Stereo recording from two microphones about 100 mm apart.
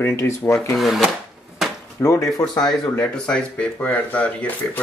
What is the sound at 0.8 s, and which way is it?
Speech, centre (ahead or behind).